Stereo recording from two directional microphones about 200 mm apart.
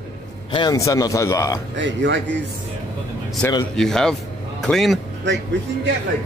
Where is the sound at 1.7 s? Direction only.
65° right (ahead or behind).